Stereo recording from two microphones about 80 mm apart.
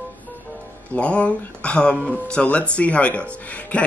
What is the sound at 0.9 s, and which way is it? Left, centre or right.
Speech, centre.